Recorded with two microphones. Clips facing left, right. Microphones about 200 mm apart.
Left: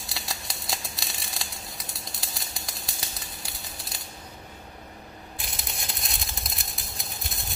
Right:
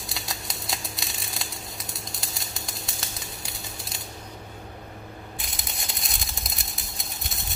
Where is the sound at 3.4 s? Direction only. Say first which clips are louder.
Right 3 dB; centre (ahead or behind).